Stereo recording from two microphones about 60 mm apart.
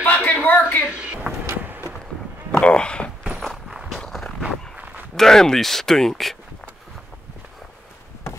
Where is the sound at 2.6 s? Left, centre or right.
Centre.